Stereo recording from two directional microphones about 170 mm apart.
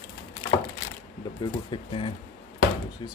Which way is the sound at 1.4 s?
30° left (ahead or behind).